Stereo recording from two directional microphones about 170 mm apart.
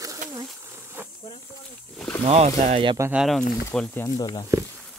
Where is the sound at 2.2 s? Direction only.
40° right (ahead or behind).